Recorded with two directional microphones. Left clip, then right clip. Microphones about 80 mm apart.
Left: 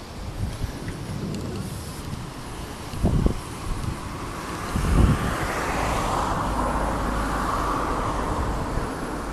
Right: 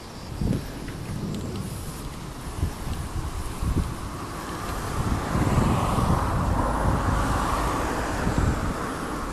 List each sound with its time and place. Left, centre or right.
4.8 s vehicle: left
6.7 s vehicle: centre
7.0 s vehicle: centre; by 8.3 s right